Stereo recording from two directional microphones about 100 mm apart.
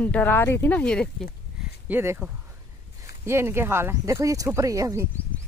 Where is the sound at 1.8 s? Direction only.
25° right (ahead or behind).